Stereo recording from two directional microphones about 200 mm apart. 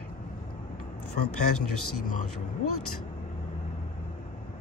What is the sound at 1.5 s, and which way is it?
Speech, 90° left.